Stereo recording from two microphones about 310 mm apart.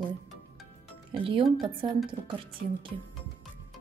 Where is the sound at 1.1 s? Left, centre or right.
Centre.